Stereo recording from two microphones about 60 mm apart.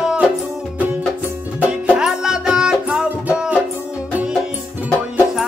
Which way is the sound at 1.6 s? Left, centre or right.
Centre.